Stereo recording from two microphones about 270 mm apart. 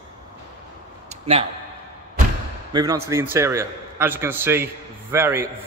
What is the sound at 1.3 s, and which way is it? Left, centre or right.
Speech, right.